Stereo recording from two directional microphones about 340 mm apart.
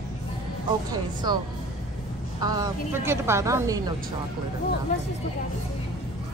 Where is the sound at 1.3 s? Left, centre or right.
Centre.